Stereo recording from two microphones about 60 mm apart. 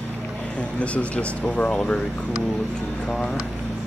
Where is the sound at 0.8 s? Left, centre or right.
Left.